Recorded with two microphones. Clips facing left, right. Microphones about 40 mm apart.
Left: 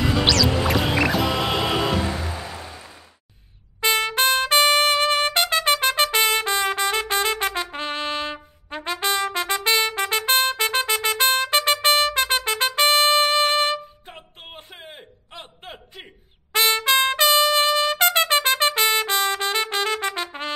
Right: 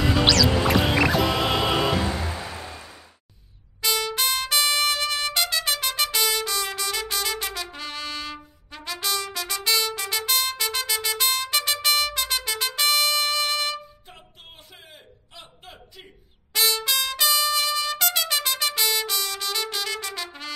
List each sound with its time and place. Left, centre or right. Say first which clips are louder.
0.0 s music: even; centre
3.8 s trumpet: left 5 dB; left